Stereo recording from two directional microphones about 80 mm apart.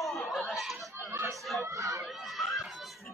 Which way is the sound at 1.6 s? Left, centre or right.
Right.